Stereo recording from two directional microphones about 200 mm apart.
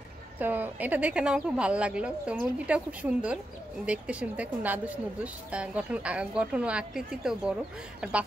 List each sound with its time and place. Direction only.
0.4 s a woman's voice: 10° right (ahead or behind)